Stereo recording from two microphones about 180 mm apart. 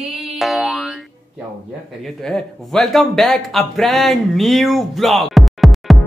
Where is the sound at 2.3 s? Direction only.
Centre (ahead or behind).